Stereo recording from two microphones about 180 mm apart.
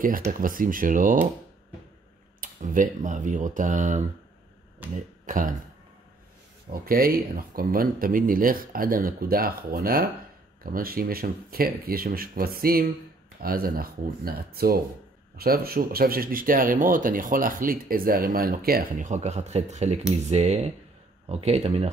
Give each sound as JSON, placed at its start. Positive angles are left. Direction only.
{"t": 0.0, "sound": "speech", "side_deg": -50}
{"t": 2.4, "sound": "speech", "side_deg": -45}
{"t": 5.2, "sound": "speech", "side_deg": -45}
{"t": 6.7, "sound": "speech", "side_deg": -55}